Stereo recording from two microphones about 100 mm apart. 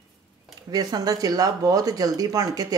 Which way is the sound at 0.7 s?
40° right (ahead or behind).